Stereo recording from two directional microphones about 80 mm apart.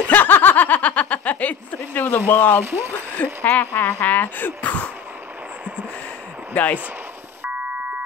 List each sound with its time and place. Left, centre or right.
0.1 s snicker: left
2.6 s speech: right
3.4 s speech: left
6.5 s speech: centre